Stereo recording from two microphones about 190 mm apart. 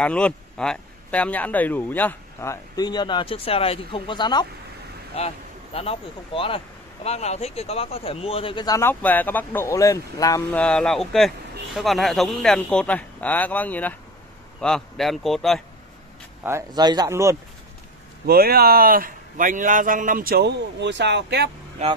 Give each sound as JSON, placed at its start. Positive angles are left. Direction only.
{"t": 0.0, "sound": "speech", "side_deg": 5}
{"t": 10.5, "sound": "speech", "side_deg": 5}
{"t": 16.4, "sound": "speech", "side_deg": -20}
{"t": 18.2, "sound": "a man's voice", "side_deg": -50}